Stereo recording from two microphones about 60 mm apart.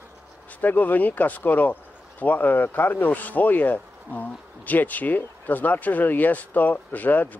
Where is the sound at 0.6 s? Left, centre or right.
Left.